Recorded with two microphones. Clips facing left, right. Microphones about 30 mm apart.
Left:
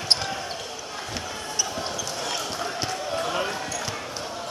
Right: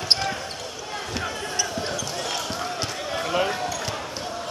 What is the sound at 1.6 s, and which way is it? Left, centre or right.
Basketball bounce, centre.